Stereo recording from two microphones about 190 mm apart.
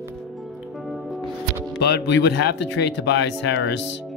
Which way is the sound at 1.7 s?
65° left (ahead or behind).